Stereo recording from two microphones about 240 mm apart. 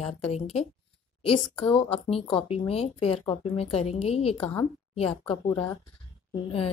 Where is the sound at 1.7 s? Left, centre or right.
Left.